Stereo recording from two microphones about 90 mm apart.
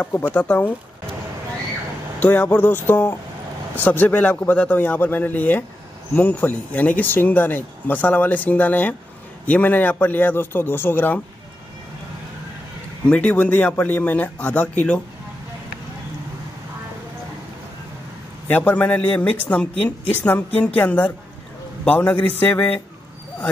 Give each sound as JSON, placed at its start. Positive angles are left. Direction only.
{"t": 0.0, "sound": "a man's voice", "side_deg": 20}
{"t": 2.1, "sound": "a man's voice", "side_deg": 20}
{"t": 13.0, "sound": "speech", "side_deg": 15}
{"t": 18.5, "sound": "a man's voice", "side_deg": 15}